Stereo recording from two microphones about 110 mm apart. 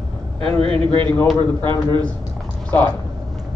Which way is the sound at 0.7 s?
50° right (ahead or behind).